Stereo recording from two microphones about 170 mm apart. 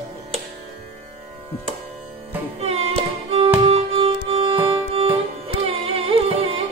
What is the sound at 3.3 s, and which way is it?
Music, 35° right (ahead or behind).